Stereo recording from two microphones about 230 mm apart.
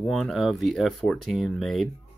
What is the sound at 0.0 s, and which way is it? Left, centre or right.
Speech, centre.